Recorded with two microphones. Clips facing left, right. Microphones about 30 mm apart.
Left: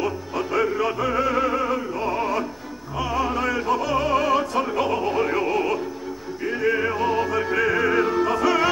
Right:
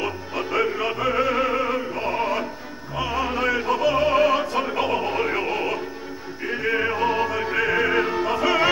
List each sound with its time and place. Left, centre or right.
0.0 s music: centre
3.0 s opera: right
6.4 s music: centre